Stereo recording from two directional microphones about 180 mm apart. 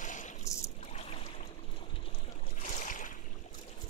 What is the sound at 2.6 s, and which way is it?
Boat, 45° left (ahead or behind).